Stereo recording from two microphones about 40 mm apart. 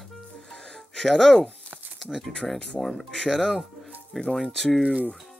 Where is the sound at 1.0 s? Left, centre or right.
Centre.